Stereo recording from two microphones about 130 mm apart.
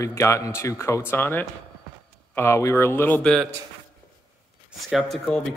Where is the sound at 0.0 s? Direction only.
20° left (ahead or behind); by 3.4 s 5° left (ahead or behind).